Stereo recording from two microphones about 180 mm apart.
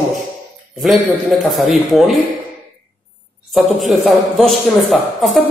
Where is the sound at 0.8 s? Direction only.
Centre (ahead or behind).